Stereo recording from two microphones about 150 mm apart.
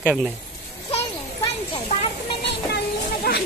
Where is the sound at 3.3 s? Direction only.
90° left.